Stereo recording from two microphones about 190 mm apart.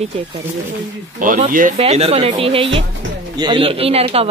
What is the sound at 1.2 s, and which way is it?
Speech, 45° right (ahead or behind).